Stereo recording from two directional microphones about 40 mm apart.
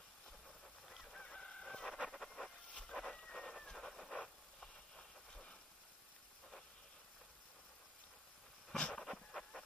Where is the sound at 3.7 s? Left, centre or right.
Centre.